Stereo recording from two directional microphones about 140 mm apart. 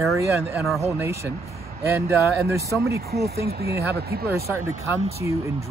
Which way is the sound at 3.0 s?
90° right.